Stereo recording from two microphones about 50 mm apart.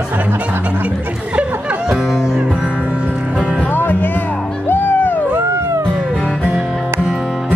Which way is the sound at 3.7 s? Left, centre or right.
Left.